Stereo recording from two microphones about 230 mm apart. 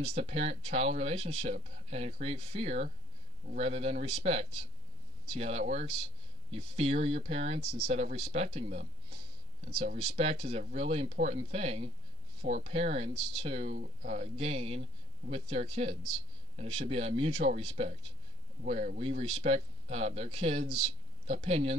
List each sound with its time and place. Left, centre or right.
0.0 s speech: right